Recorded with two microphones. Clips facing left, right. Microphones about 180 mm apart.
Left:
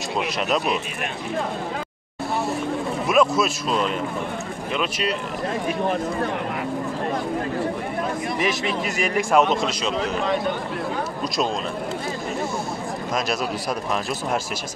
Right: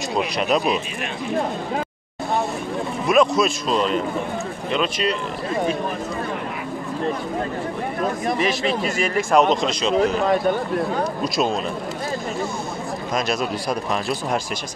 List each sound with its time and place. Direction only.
0.1 s speech: centre (ahead or behind)
3.1 s speech: 5° left (ahead or behind)
8.8 s a man's voice: 15° left (ahead or behind)
9.3 s speech: 5° left (ahead or behind)
13.1 s speech: centre (ahead or behind)